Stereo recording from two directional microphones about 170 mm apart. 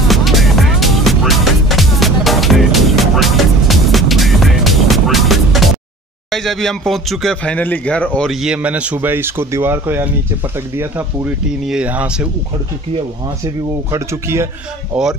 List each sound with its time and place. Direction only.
0.1 s music: centre (ahead or behind)
6.3 s speech: centre (ahead or behind)
8.3 s speech: 5° right (ahead or behind)
13.9 s speech: 15° right (ahead or behind)